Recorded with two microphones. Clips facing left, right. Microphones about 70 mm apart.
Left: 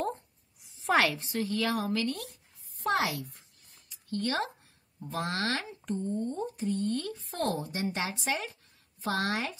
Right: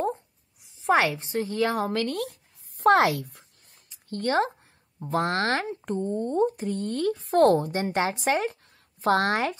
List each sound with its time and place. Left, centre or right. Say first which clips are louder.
0.8 s a woman's voice: right 4 dB; right
2.8 s a sound: right 10 dB; right
5.0 s speech: right 7 dB; right